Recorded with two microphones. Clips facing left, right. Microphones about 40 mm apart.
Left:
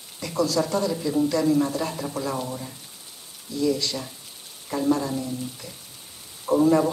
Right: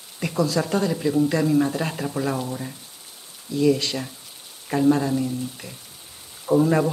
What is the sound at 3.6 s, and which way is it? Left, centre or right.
Speech, right.